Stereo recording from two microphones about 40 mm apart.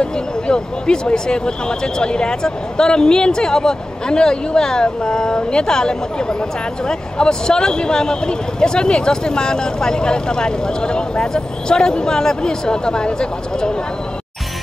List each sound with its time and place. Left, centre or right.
0.0 s speech: left